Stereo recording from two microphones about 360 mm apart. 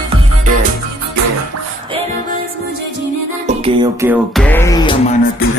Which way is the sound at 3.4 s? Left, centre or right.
Centre.